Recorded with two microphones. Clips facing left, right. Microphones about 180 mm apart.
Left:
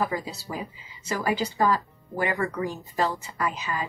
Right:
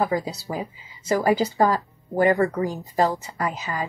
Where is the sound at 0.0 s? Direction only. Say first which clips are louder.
Right 5 dB; 35° right (ahead or behind).